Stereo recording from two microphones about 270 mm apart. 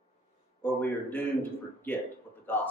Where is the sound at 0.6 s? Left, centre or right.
Centre.